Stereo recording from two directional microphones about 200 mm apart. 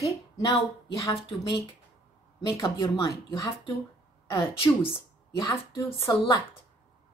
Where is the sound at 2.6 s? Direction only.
25° left (ahead or behind).